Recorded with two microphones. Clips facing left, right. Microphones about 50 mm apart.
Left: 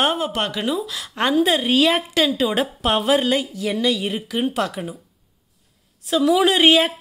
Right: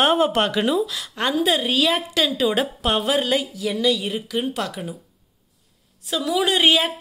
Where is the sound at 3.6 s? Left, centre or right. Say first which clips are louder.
Even; left.